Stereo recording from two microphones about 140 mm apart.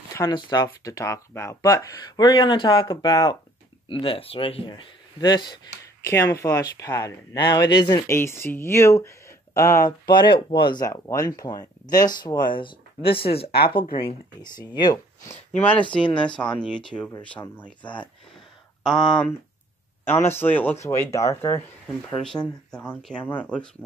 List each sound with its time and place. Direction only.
0.1 s a sound: 25° left (ahead or behind)
0.4 s speech: 30° left (ahead or behind)
3.9 s speech: 40° left (ahead or behind)
6.0 s speech: 20° left (ahead or behind)
8.1 s speech: 15° left (ahead or behind)
9.8 s speech: 30° left (ahead or behind)
13.9 s speech: 30° left (ahead or behind)
15.9 s speech: 10° left (ahead or behind)
20.1 s speech: 15° left (ahead or behind)
22.2 s speech: 5° left (ahead or behind)